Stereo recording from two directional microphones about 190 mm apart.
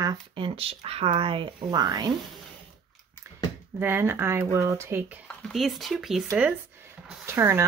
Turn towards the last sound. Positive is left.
turn(degrees=-15)  # may be behind; listen again after turning